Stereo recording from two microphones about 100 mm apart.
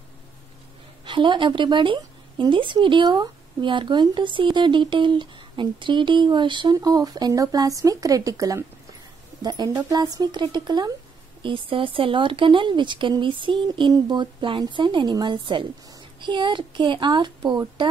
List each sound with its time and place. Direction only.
1.0 s a woman's voice: 55° right (ahead or behind)
11.4 s a woman's voice: 60° right (ahead or behind)